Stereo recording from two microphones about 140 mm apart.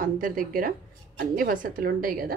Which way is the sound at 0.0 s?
80° right.